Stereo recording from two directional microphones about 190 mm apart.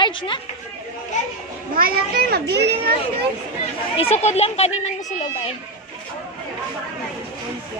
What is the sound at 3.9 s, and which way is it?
Speech, 35° left (ahead or behind).